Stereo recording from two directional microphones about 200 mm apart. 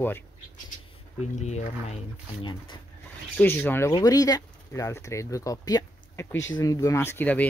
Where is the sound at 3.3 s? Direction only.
10° left (ahead or behind).